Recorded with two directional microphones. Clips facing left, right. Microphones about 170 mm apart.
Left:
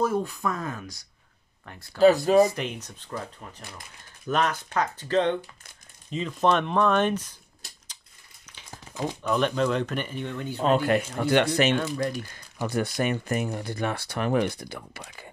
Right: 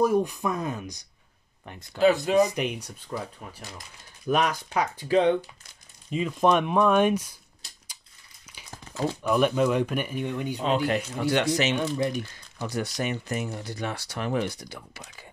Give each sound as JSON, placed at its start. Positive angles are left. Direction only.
{"t": 0.0, "sound": "speech", "side_deg": -15}
{"t": 2.0, "sound": "speech", "side_deg": 40}
{"t": 2.4, "sound": "speech", "side_deg": -15}
{"t": 8.6, "sound": "a sound", "side_deg": 15}
{"t": 9.2, "sound": "speech", "side_deg": -10}
{"t": 10.6, "sound": "speech", "side_deg": 50}
{"t": 11.7, "sound": "speech", "side_deg": -15}
{"t": 12.5, "sound": "speech", "side_deg": 55}